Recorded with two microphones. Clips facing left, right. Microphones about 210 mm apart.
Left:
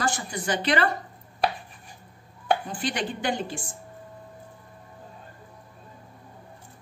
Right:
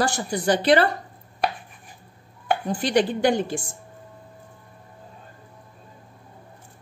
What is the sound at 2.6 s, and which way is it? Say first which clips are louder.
Speech: right 9 dB; 40° right (ahead or behind).